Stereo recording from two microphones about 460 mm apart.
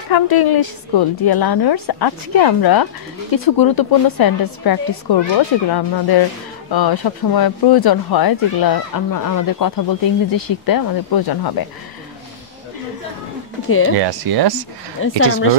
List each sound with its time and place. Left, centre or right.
0.1 s speech: left
13.7 s speech: left
13.9 s speech: right
15.0 s speech: left